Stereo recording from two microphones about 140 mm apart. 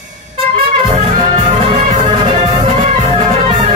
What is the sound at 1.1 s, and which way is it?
Music, 60° right (ahead or behind).